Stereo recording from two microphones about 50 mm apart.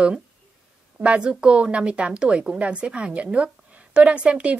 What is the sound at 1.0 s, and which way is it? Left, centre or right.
A woman's voice, right.